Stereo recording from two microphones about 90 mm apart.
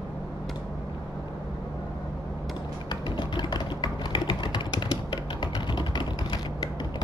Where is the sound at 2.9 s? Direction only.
55° left (ahead or behind).